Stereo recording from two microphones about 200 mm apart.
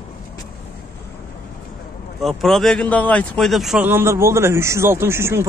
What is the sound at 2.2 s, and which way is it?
Speech, centre (ahead or behind).